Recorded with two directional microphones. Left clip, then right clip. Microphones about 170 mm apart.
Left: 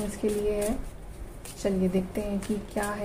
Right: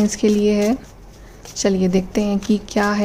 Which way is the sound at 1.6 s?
65° right (ahead or behind).